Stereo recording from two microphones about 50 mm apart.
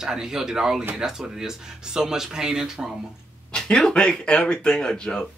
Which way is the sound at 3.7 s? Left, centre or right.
Centre.